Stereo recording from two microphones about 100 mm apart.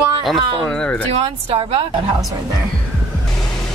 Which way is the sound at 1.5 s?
70° right (ahead or behind).